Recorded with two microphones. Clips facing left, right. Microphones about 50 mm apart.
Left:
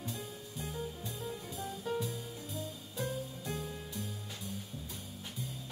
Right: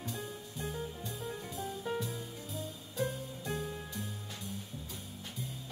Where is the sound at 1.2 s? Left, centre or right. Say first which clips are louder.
Right 1 dB; centre.